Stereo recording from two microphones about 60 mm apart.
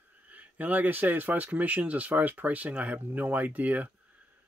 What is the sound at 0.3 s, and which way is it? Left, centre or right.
Speech, right.